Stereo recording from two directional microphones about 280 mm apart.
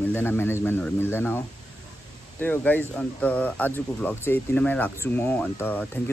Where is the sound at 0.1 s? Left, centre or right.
Centre.